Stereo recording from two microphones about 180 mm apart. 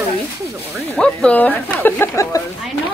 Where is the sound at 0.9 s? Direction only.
5° left (ahead or behind).